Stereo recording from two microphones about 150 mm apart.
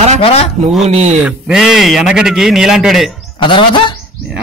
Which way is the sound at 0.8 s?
45° right (ahead or behind).